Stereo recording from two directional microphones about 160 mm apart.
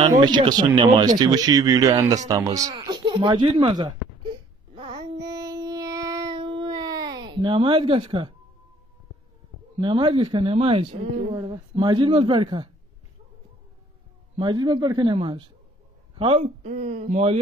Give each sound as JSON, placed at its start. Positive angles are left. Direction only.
{"t": 0.1, "sound": "speech", "side_deg": -25}
{"t": 4.7, "sound": "child singing", "side_deg": -30}
{"t": 9.8, "sound": "speech", "side_deg": -30}
{"t": 14.4, "sound": "speech", "side_deg": -30}